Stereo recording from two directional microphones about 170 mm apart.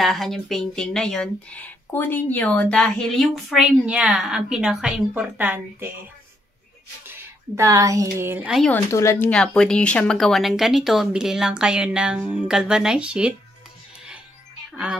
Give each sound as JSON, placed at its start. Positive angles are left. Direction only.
{"t": 0.0, "sound": "speech", "side_deg": 0}
{"t": 7.1, "sound": "speech", "side_deg": -15}
{"t": 8.6, "sound": "speech", "side_deg": 15}
{"t": 9.3, "sound": "speech", "side_deg": 5}
{"t": 14.7, "sound": "wind chime", "side_deg": -5}